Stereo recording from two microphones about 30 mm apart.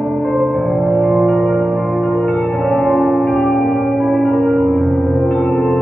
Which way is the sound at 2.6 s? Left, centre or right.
Centre.